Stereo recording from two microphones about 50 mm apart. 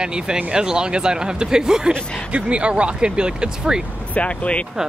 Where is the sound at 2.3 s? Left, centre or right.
Right.